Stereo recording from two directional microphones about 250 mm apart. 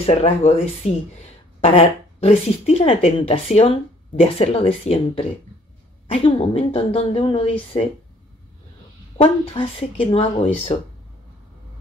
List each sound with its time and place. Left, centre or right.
0.0 s speech: left
9.2 s speech: left